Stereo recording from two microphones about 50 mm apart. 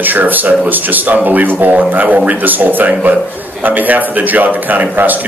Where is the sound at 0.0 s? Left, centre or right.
Right.